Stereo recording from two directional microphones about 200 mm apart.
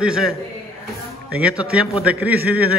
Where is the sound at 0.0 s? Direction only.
5° right (ahead or behind).